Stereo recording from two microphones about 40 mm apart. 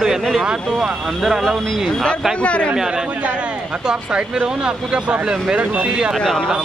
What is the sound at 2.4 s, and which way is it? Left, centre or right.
Speech, left.